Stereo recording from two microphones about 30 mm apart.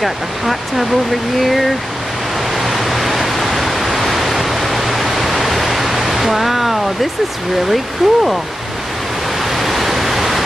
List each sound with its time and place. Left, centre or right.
0.0 s speech: centre
2.5 s pink noise: centre
7.7 s speech: centre
9.5 s pink noise: centre